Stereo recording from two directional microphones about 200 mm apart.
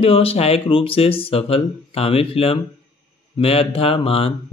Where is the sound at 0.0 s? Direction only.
30° left (ahead or behind).